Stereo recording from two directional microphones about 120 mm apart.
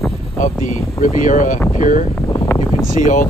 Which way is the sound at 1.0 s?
90° left.